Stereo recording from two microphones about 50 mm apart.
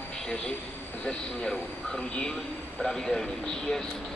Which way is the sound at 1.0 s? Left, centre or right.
Centre.